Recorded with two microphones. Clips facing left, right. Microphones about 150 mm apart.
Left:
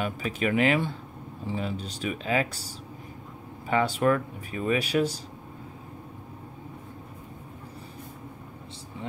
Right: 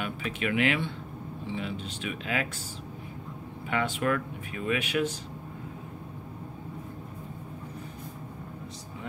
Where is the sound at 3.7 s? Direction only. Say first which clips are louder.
Left 5 dB; 35° left (ahead or behind).